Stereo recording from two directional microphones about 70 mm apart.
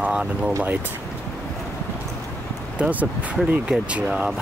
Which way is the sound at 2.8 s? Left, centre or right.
Right.